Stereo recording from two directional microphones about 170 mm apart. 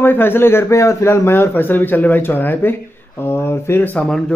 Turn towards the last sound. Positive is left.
turn(degrees=5)  # may be behind; listen again after turning